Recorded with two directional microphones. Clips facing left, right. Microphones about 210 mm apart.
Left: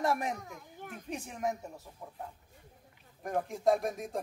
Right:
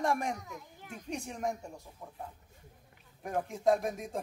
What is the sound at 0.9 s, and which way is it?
Speech, centre (ahead or behind).